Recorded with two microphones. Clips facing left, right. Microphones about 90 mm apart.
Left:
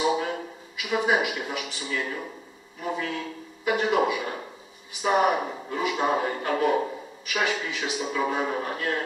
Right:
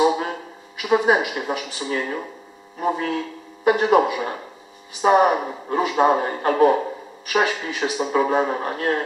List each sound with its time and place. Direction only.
0.9 s a man's voice: 35° right (ahead or behind)